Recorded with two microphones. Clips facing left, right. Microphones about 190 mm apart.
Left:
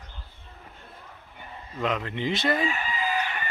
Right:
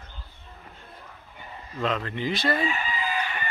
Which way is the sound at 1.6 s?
15° left (ahead or behind).